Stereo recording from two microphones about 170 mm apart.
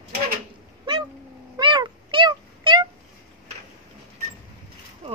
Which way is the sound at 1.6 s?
30° right (ahead or behind).